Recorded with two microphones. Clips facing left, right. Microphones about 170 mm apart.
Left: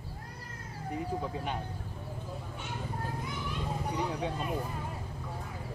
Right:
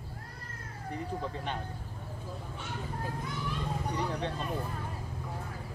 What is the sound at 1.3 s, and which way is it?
Speech, 5° left (ahead or behind).